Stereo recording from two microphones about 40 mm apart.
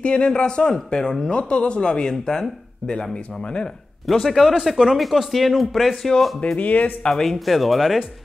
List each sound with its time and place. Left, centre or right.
0.0 s speech: left
4.1 s speech: centre
6.4 s speech: left
7.0 s speech: centre
7.2 s speech: centre